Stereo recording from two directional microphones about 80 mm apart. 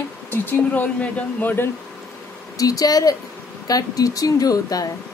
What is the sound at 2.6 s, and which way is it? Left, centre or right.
Speech, left.